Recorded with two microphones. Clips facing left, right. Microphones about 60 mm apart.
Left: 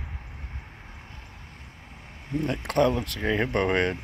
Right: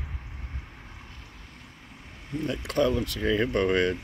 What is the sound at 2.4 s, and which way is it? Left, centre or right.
Speech, left.